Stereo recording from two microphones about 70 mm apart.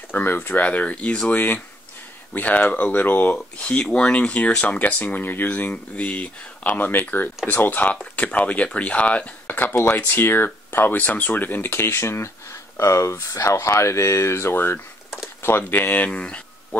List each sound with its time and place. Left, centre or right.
0.1 s speech: left; by 1.3 s centre
1.3 s speech: left